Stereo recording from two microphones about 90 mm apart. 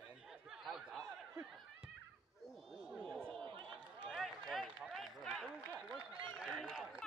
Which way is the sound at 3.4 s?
65° right (ahead or behind).